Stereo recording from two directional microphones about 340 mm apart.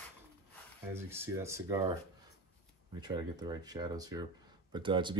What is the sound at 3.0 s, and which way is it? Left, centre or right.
Speech, centre.